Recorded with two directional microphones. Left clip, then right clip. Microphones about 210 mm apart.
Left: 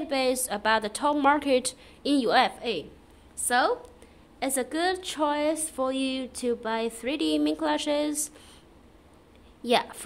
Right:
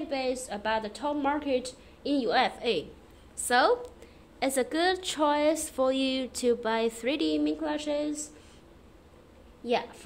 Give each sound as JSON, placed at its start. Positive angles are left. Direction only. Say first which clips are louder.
{"t": 0.1, "sound": "a woman's voice", "louder": "left 6 dB", "side_deg": 15}
{"t": 2.6, "sound": "a woman's voice", "louder": "right 2 dB", "side_deg": 0}
{"t": 9.6, "sound": "a woman's voice", "louder": "left 5 dB", "side_deg": 15}